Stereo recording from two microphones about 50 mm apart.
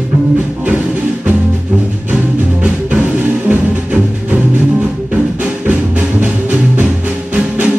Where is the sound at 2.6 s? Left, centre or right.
Right.